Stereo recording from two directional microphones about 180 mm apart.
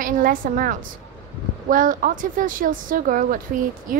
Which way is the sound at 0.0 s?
50° right (ahead or behind).